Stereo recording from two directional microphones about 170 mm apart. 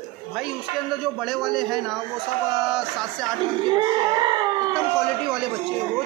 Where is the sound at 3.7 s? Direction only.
25° right (ahead or behind).